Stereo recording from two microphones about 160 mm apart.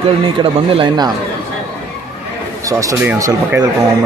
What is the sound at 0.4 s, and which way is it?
Speech, 30° right (ahead or behind).